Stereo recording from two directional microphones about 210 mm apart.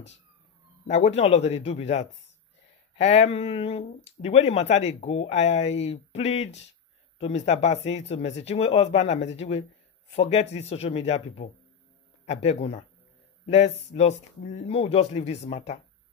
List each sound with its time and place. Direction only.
0.8 s speech: 30° left (ahead or behind)